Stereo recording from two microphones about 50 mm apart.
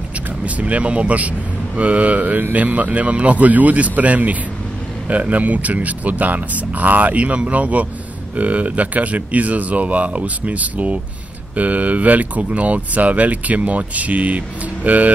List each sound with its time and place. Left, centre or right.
0.6 s speech: right